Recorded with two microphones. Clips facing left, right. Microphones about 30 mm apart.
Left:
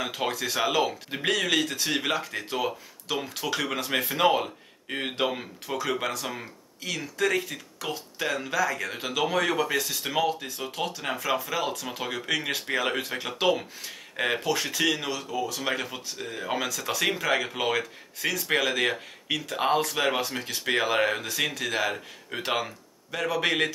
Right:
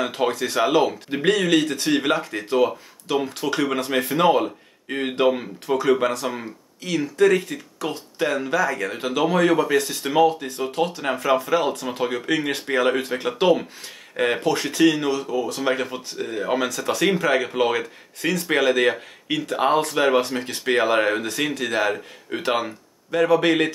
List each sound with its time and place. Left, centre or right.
0.0 s speech: centre
3.7 s speech: centre
12.4 s speech: centre
14.4 s speech: centre